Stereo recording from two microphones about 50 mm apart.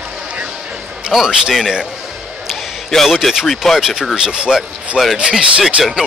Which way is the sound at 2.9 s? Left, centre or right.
Centre.